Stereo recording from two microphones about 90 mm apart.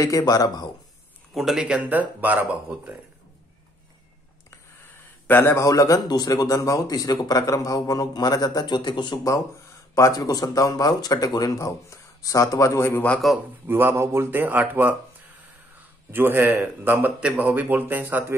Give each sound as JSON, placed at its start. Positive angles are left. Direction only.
{"t": 0.0, "sound": "speech", "side_deg": 40}
{"t": 1.3, "sound": "a man's voice", "side_deg": -5}
{"t": 1.9, "sound": "speech", "side_deg": -20}
{"t": 5.2, "sound": "a man's voice", "side_deg": 25}
{"t": 5.6, "sound": "speech", "side_deg": 35}
{"t": 9.9, "sound": "speech", "side_deg": 40}
{"t": 13.2, "sound": "a man's voice", "side_deg": 0}
{"t": 13.7, "sound": "speech", "side_deg": -25}
{"t": 16.1, "sound": "speech", "side_deg": -20}